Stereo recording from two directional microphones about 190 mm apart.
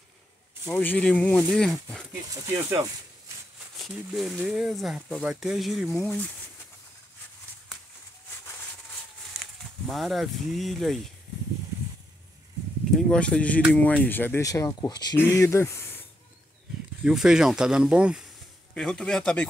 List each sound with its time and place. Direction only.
0.7 s speech: 5° left (ahead or behind)
2.3 s speech: 20° right (ahead or behind)
3.7 s speech: centre (ahead or behind)
5.9 s speech: 10° left (ahead or behind)
9.3 s a sound: 5° right (ahead or behind)
9.8 s speech: centre (ahead or behind)
13.1 s speech: 5° left (ahead or behind)
17.0 s speech: 5° right (ahead or behind)